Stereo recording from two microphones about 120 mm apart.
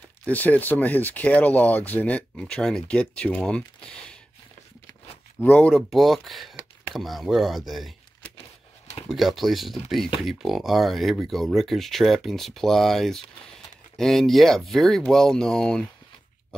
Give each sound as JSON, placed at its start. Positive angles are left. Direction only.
{"t": 0.3, "sound": "speech", "side_deg": 15}
{"t": 5.4, "sound": "speech", "side_deg": 15}
{"t": 5.8, "sound": "speech", "side_deg": 0}
{"t": 9.1, "sound": "speech", "side_deg": 0}